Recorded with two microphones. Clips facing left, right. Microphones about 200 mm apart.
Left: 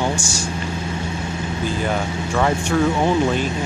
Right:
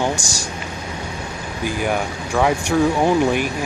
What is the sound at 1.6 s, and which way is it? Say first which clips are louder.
Speech: right 2 dB; 10° right (ahead or behind).